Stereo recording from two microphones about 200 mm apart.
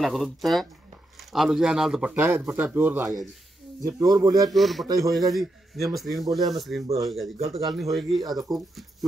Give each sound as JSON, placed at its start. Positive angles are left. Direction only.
{"t": 0.0, "sound": "a man's voice", "side_deg": 0}
{"t": 4.5, "sound": "a man's voice", "side_deg": 0}
{"t": 4.8, "sound": "speech", "side_deg": -15}
{"t": 5.3, "sound": "a man's voice", "side_deg": 0}
{"t": 7.3, "sound": "speech", "side_deg": -30}
{"t": 7.6, "sound": "a man's voice", "side_deg": 0}
{"t": 8.2, "sound": "speech", "side_deg": -20}
{"t": 8.5, "sound": "a man's voice", "side_deg": 0}